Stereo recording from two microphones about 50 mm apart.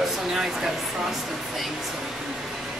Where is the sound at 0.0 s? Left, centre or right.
Centre.